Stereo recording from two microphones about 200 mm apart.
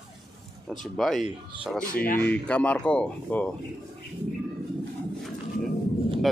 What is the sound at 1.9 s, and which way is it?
Speech, 45° left (ahead or behind).